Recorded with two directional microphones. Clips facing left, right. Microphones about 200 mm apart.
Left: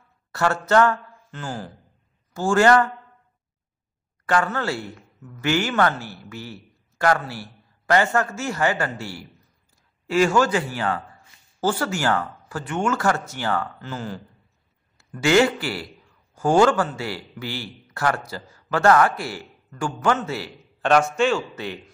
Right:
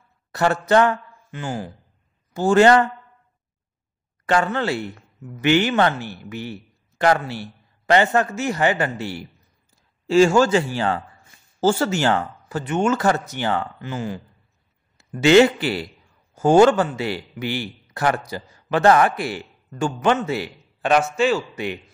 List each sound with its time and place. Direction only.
0.3 s speech: 20° right (ahead or behind)
4.3 s a man's voice: 25° right (ahead or behind)
15.0 s a man's voice: 20° right (ahead or behind)
20.8 s a man's voice: 5° right (ahead or behind)